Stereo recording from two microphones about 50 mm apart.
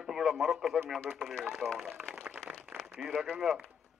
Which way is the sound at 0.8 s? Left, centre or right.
Centre.